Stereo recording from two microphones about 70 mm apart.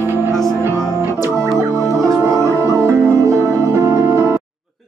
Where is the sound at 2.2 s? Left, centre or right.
Right.